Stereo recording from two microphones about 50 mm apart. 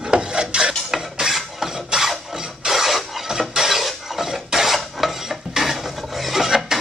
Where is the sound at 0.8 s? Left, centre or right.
Centre.